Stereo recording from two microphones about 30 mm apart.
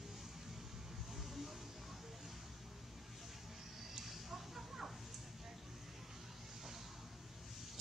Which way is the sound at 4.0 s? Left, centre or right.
Centre.